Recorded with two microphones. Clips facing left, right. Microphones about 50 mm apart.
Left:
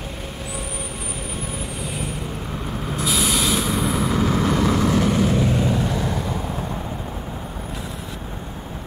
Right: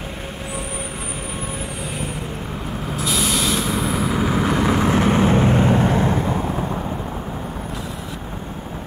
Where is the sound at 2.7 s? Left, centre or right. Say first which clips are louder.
Even; centre.